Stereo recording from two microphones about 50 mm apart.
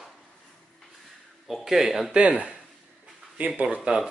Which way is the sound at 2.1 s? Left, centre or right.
Right.